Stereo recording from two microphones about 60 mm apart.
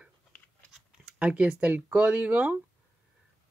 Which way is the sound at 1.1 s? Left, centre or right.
Right.